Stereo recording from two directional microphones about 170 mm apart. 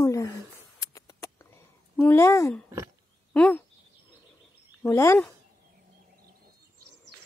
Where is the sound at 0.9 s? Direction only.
20° left (ahead or behind).